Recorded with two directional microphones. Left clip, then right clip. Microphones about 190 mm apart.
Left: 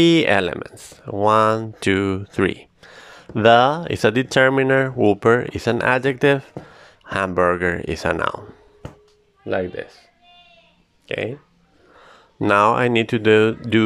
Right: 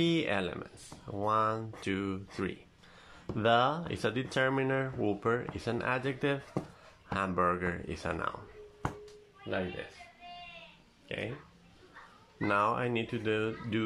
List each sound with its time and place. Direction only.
0.0 s speech: 50° left (ahead or behind)
11.1 s speech: 55° left (ahead or behind)
12.4 s speech: 55° left (ahead or behind)